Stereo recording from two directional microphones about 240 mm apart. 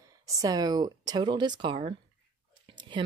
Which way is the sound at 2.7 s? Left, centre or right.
Centre.